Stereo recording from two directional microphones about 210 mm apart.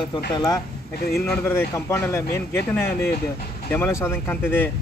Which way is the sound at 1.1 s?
5° left (ahead or behind).